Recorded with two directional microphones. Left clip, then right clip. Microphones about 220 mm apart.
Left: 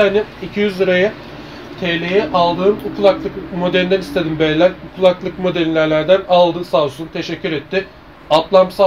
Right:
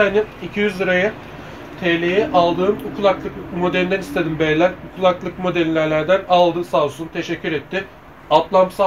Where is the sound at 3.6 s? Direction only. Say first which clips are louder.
Left 4 dB; 20° left (ahead or behind).